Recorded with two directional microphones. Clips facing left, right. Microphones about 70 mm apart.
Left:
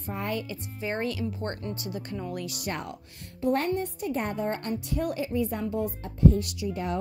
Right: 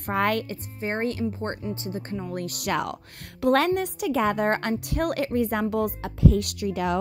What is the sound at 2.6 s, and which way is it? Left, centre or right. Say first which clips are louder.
Speech: right 7 dB; right.